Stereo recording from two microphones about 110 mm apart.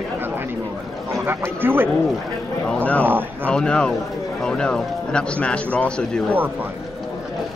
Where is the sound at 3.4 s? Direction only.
10° left (ahead or behind).